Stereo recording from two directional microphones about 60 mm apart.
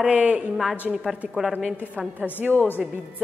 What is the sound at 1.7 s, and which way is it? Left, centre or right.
Speech, right.